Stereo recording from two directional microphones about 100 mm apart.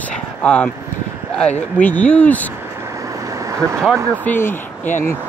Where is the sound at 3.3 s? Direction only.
35° right (ahead or behind).